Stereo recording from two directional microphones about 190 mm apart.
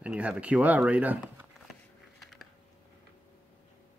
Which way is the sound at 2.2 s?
Centre (ahead or behind).